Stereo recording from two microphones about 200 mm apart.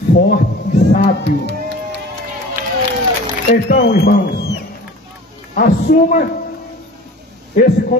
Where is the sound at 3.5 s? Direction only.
35° left (ahead or behind).